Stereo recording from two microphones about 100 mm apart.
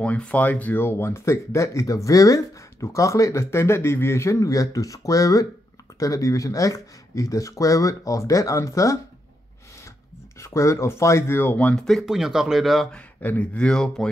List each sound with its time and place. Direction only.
0.0 s speech: 15° left (ahead or behind); by 8.9 s 30° left (ahead or behind)
10.4 s speech: 30° left (ahead or behind); by 11.8 s 15° left (ahead or behind)
11.8 s speech: centre (ahead or behind)
12.9 s speech: 15° left (ahead or behind)